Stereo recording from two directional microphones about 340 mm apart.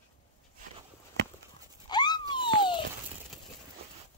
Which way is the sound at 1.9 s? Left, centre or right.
Centre.